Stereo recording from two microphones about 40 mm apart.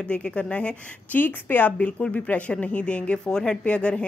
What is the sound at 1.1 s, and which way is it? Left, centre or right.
Speech, left.